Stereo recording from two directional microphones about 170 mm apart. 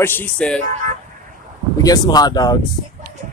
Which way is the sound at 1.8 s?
20° left (ahead or behind).